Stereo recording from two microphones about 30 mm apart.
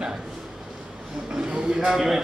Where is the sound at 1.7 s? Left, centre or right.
Centre.